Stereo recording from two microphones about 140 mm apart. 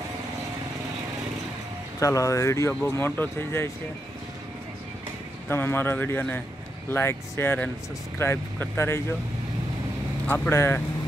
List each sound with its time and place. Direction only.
2.0 s speech: 25° left (ahead or behind)
5.5 s speech: 15° left (ahead or behind)
10.2 s speech: 10° left (ahead or behind)